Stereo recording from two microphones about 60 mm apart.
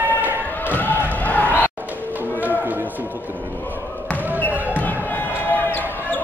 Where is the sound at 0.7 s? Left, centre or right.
Left.